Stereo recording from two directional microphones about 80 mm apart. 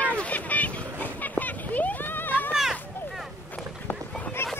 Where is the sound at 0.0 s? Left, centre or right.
Centre.